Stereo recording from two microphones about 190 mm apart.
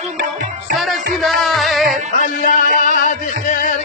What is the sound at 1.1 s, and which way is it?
Music, centre (ahead or behind).